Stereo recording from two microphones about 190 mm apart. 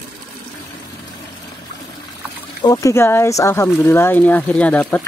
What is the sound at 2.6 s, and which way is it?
Speech, 20° left (ahead or behind).